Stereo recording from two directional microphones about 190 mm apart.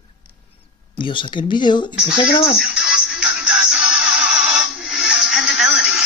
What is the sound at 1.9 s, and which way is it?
Speech, 5° right (ahead or behind).